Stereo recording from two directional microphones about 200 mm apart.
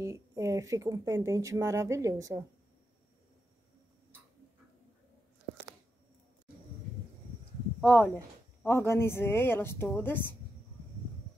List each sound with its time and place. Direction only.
0.0 s speech: 15° right (ahead or behind)
7.8 s speech: 10° left (ahead or behind)